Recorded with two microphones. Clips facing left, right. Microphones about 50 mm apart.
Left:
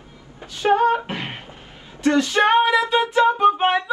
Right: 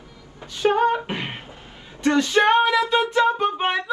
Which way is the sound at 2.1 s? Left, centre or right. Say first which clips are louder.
Even; centre.